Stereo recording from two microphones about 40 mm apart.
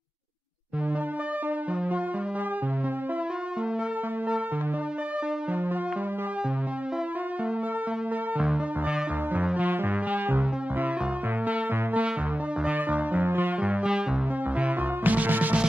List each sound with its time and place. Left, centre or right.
9.6 s music: right
13.2 s music: right
15.0 s music: right